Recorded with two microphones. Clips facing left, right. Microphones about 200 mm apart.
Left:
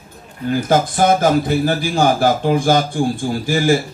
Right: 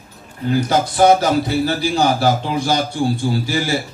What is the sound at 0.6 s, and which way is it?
Speech, 50° left (ahead or behind).